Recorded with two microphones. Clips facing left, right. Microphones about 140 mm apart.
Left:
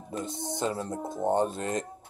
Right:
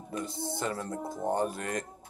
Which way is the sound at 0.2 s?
20° left (ahead or behind).